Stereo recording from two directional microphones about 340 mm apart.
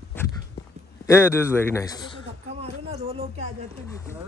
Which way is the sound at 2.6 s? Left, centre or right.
Centre.